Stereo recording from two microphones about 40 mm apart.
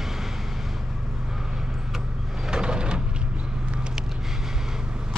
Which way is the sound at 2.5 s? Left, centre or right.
Right.